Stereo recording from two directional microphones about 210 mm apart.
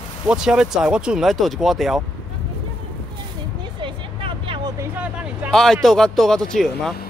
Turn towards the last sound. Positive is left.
turn(degrees=0)  # may be behind; listen again after turning